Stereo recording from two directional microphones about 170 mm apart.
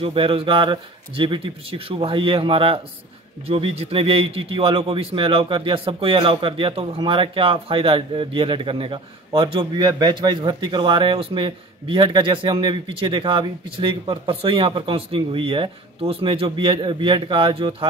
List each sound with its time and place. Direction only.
0.0 s a man's voice: 35° right (ahead or behind)